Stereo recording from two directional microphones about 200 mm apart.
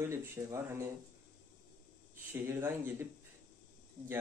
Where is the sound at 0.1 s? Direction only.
15° right (ahead or behind).